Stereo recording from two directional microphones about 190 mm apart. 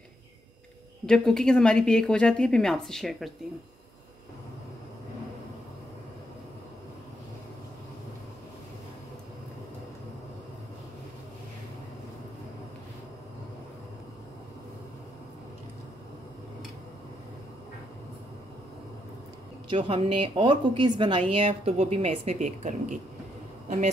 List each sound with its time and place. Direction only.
1.0 s a woman's voice: 5° left (ahead or behind)
19.7 s a woman's voice: 30° right (ahead or behind)